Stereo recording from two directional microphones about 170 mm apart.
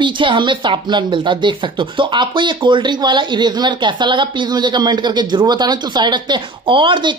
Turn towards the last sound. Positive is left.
turn(degrees=-30)  # may be behind; listen again after turning